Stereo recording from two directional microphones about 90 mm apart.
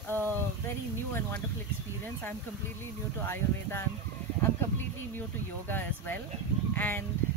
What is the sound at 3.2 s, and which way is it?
Speech, 25° left (ahead or behind).